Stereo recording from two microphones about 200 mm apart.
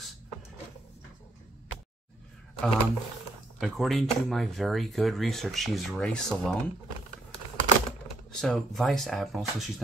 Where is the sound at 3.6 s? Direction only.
Centre (ahead or behind).